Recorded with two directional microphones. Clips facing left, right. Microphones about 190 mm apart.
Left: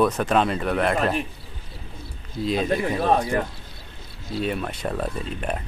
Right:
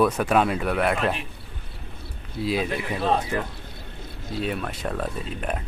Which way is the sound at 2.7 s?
45° left (ahead or behind).